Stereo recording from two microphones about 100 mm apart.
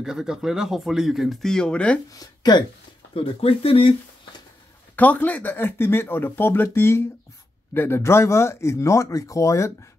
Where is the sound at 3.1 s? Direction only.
70° left (ahead or behind).